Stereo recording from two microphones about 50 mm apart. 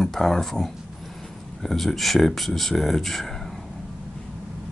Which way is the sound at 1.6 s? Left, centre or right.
Centre.